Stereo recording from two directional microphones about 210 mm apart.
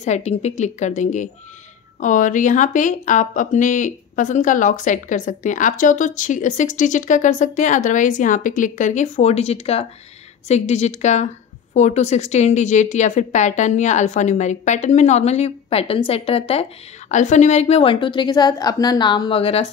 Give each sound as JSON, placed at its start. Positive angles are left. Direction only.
{"t": 0.0, "sound": "a woman's voice", "side_deg": 30}